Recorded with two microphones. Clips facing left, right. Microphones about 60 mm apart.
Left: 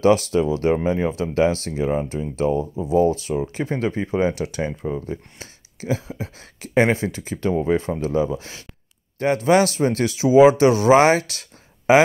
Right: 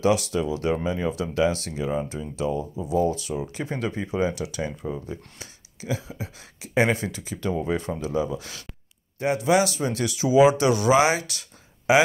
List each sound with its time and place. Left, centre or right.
0.0 s speech: left
9.2 s speech: left